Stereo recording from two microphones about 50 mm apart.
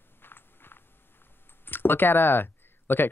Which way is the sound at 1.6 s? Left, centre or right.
Left.